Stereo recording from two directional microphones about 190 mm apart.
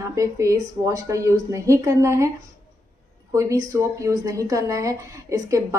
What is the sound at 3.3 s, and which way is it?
Speech, 15° right (ahead or behind).